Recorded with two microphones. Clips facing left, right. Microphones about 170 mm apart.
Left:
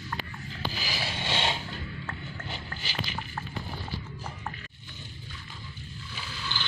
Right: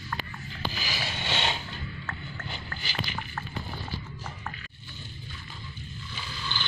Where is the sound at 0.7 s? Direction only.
35° left (ahead or behind).